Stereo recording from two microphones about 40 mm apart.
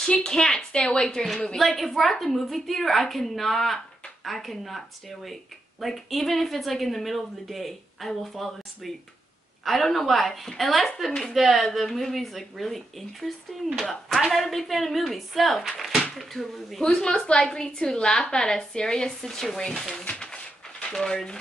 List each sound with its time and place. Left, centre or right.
0.0 s a woman's voice: centre
1.2 s a woman's voice: centre
16.8 s a woman's voice: centre
20.1 s a sound: left
20.9 s a woman's voice: centre